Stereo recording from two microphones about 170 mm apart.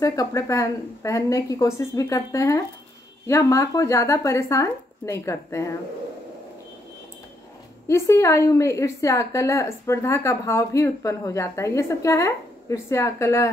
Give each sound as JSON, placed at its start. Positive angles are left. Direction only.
{"t": 0.0, "sound": "a woman's voice", "side_deg": 20}
{"t": 7.9, "sound": "a woman's voice", "side_deg": 15}